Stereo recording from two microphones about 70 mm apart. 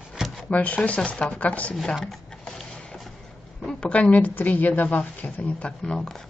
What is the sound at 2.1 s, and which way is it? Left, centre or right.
Printer, centre.